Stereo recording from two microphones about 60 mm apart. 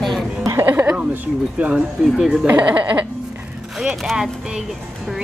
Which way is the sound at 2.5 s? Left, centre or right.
Right.